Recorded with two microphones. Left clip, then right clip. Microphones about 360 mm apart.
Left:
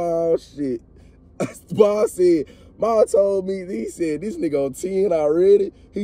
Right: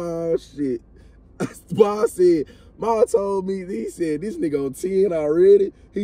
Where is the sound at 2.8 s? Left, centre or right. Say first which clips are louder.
Left 3 dB; centre.